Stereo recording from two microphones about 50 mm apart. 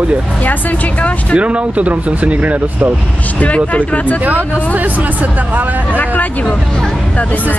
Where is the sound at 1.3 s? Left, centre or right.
Right.